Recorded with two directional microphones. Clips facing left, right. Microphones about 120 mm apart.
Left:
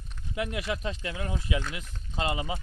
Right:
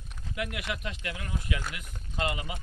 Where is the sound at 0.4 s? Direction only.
30° left (ahead or behind).